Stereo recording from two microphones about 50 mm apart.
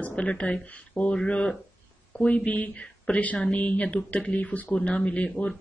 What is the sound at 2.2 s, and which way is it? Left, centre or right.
Speech, left.